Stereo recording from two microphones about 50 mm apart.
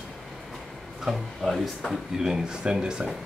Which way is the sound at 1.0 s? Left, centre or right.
Centre.